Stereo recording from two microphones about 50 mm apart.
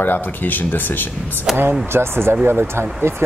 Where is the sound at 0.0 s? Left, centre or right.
Left.